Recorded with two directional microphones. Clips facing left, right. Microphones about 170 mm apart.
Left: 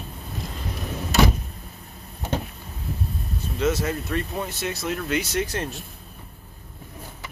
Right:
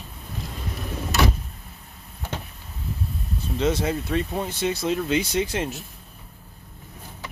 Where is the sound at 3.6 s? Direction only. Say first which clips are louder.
Right 1 dB; 30° right (ahead or behind).